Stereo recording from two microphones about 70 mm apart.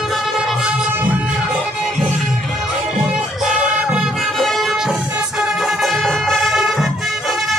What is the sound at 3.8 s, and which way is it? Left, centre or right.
Music, centre.